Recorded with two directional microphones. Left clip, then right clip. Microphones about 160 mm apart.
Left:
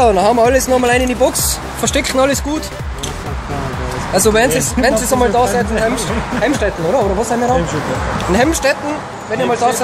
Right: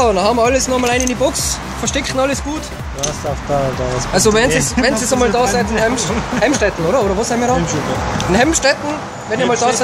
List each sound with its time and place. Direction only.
0.0 s speech: 20° left (ahead or behind)
1.9 s speech: 50° left (ahead or behind)
4.1 s speech: centre (ahead or behind)